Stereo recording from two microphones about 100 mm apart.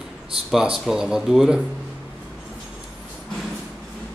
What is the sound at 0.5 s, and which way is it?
Speech, 5° right (ahead or behind).